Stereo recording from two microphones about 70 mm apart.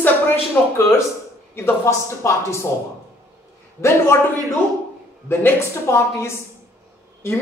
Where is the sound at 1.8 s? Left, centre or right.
Left.